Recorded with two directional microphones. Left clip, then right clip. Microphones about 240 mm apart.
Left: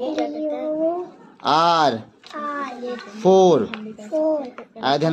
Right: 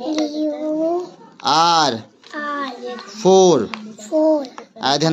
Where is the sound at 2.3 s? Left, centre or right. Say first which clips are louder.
Right 3 dB; right.